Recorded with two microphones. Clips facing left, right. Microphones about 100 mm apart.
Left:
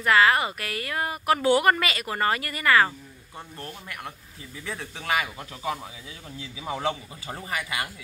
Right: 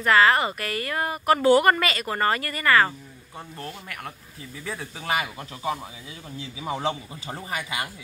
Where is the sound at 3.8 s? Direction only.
20° left (ahead or behind).